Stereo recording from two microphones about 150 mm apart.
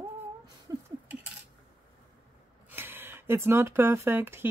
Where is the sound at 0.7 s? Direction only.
20° right (ahead or behind).